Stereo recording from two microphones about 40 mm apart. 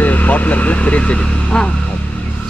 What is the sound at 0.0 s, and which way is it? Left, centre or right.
Speech, left.